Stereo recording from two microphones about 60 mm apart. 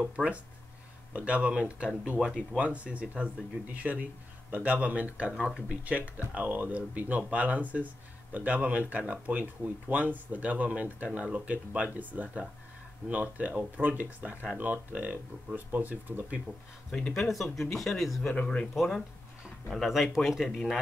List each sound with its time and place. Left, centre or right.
0.1 s speech: right
16.9 s speech: centre
18.3 s speech: centre
18.8 s speech: centre